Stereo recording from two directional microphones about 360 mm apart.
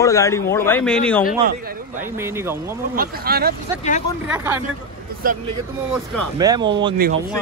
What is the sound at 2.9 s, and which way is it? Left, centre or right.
Speech, right.